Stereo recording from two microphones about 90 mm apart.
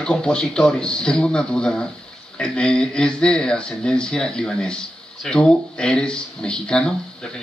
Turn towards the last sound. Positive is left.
turn(degrees=10)  # may be behind; listen again after turning